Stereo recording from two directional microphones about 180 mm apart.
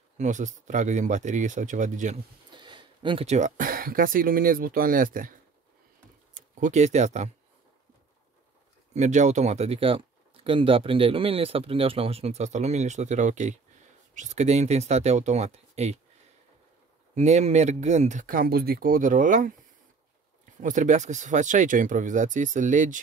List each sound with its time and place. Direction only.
0.2 s speech: 45° right (ahead or behind)
2.5 s speech: 25° right (ahead or behind); by 5.3 s 50° right (ahead or behind)
6.3 s speech: 40° right (ahead or behind)
8.9 s speech: 40° right (ahead or behind)
17.1 s speech: 40° right (ahead or behind)
20.6 s speech: 45° right (ahead or behind)